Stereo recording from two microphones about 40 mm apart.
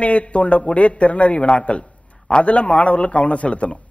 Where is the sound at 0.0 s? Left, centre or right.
Left.